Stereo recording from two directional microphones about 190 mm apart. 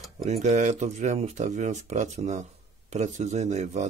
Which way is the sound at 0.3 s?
40° right (ahead or behind).